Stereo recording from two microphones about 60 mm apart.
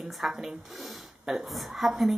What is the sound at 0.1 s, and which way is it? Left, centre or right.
A woman's voice, centre.